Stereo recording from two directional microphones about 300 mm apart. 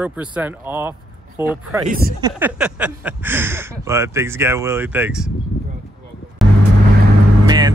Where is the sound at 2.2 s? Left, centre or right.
Centre.